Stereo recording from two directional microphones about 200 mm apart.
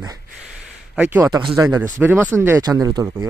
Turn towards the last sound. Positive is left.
turn(degrees=-15)  # may be behind; listen again after turning